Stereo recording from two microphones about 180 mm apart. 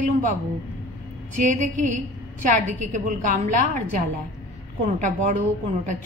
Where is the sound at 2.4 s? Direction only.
45° right (ahead or behind).